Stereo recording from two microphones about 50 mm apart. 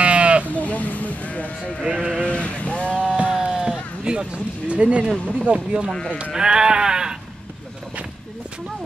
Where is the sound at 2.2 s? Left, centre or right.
Left.